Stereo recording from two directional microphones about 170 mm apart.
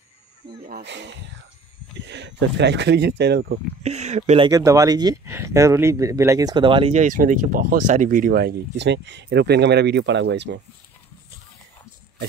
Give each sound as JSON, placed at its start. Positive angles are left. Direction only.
{"t": 0.8, "sound": "speech", "side_deg": -90}
{"t": 3.8, "sound": "speech", "side_deg": -40}
{"t": 4.5, "sound": "speech", "side_deg": -20}